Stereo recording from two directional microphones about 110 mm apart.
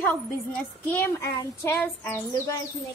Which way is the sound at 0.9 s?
20° left (ahead or behind).